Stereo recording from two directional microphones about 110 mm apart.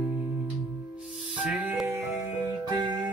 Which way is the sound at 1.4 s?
10° right (ahead or behind).